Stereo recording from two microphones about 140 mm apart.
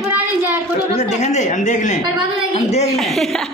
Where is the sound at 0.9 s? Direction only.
55° left (ahead or behind).